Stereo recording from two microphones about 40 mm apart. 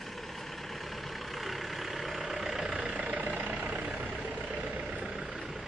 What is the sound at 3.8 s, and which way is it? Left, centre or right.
Vehicle, right.